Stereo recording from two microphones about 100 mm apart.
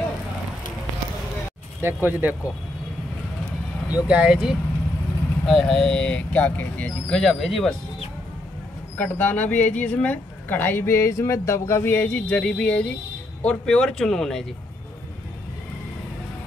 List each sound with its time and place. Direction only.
1.8 s speech: 20° right (ahead or behind)
3.9 s speech: 10° right (ahead or behind)
5.4 s speech: 5° left (ahead or behind)
7.1 s speech: 5° left (ahead or behind)
8.9 s speech: 15° left (ahead or behind)
12.1 s speech: 10° left (ahead or behind)